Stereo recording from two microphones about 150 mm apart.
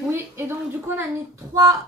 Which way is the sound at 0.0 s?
15° right (ahead or behind).